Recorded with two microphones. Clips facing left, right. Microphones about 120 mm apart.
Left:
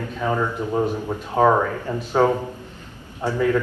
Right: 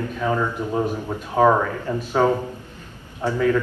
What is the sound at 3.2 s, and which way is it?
Speech, 15° left (ahead or behind).